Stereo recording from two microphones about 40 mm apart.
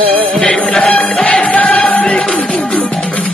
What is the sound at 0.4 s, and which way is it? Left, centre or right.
Music, left.